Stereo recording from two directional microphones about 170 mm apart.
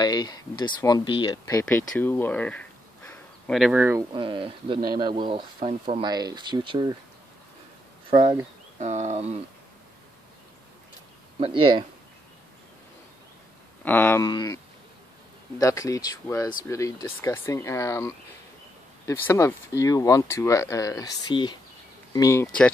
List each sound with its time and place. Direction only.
0.0 s speech: 25° left (ahead or behind)
1.7 s a sound: 10° left (ahead or behind)
3.5 s speech: 5° right (ahead or behind)
4.1 s speech: 30° right (ahead or behind)
8.1 s speech: 30° right (ahead or behind)
8.7 s speech: 45° right (ahead or behind)
11.3 s speech: 35° right (ahead or behind)
13.8 s speech: 10° left (ahead or behind)
14.2 s speech: 20° left (ahead or behind)
15.6 s speech: 20° left (ahead or behind)